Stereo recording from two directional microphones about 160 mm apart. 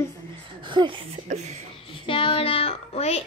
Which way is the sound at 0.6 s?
30° right (ahead or behind).